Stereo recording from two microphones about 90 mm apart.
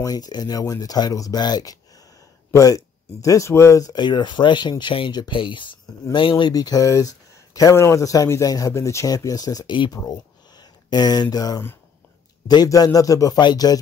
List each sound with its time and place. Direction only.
0.0 s speech: 45° left (ahead or behind)
3.9 s speech: 55° left (ahead or behind)
6.5 s speech: 45° left (ahead or behind)
12.6 s speech: 45° left (ahead or behind)
13.4 s speech: 50° left (ahead or behind)